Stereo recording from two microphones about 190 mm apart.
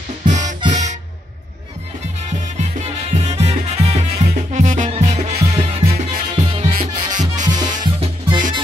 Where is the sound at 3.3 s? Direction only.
35° right (ahead or behind).